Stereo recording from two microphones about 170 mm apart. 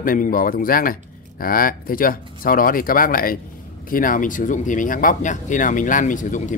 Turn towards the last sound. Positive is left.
turn(degrees=50)  # may be behind; listen again after turning